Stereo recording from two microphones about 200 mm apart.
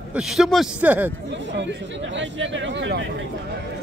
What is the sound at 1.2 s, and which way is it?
Speech, 65° right (ahead or behind).